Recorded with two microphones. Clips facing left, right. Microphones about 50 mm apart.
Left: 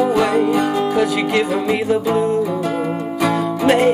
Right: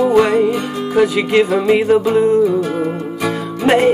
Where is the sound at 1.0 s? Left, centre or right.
Right.